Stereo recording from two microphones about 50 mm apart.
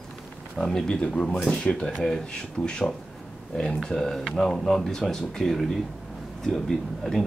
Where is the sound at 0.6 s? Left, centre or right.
Centre.